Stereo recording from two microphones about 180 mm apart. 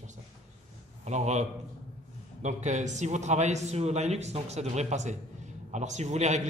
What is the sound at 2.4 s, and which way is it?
A man's voice, 40° right (ahead or behind).